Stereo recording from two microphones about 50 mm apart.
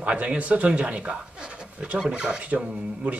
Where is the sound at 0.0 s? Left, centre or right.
Right.